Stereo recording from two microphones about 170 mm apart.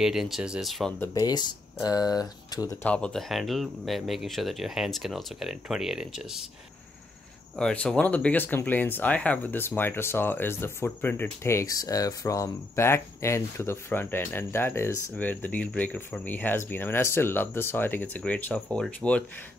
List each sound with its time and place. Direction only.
0.0 s speech: centre (ahead or behind)
0.9 s speech: 20° left (ahead or behind)
2.8 s speech: 5° left (ahead or behind)
7.5 s speech: 5° left (ahead or behind)